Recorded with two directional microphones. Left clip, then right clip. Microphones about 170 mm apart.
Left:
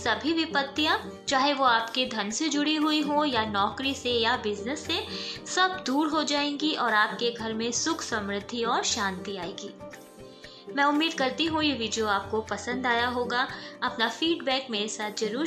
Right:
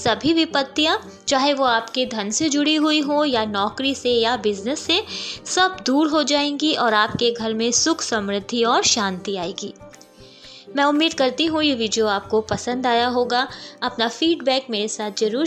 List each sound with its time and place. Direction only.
0.0 s a woman's voice: 40° right (ahead or behind)
10.7 s a woman's voice: 40° right (ahead or behind)